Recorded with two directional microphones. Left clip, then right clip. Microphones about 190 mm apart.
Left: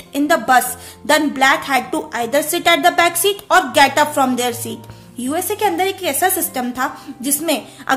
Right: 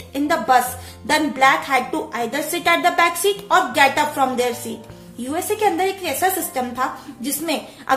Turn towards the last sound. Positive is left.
turn(degrees=45)  # may be behind; listen again after turning